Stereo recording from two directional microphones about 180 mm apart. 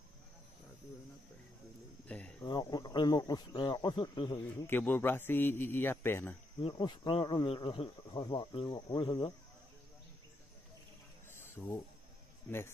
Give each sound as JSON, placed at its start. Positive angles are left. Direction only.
{"t": 2.0, "sound": "a man's voice", "side_deg": 5}
{"t": 2.4, "sound": "speech", "side_deg": 25}
{"t": 4.6, "sound": "a man's voice", "side_deg": 10}
{"t": 6.6, "sound": "speech", "side_deg": 25}
{"t": 11.2, "sound": "a sound", "side_deg": 15}
{"t": 12.4, "sound": "a man's voice", "side_deg": 10}